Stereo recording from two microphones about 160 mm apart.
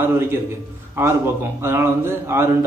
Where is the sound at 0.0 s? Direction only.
15° right (ahead or behind).